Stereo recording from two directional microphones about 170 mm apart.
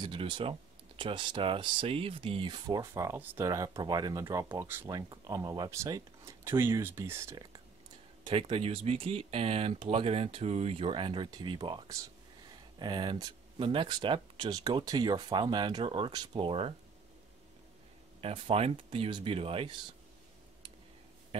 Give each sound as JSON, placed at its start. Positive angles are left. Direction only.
{"t": 0.0, "sound": "speech", "side_deg": -30}
{"t": 8.3, "sound": "speech", "side_deg": -35}
{"t": 18.2, "sound": "speech", "side_deg": -35}